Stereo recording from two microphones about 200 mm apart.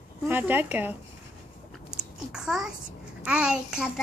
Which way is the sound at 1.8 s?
5° right (ahead or behind).